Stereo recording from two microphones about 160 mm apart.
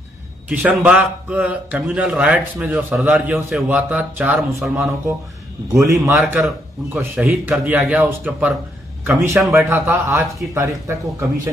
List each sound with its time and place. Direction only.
0.5 s a man's voice: 10° right (ahead or behind)
4.7 s a man's voice: 15° right (ahead or behind)